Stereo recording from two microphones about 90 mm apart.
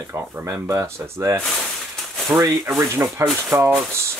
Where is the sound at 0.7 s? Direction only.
30° right (ahead or behind).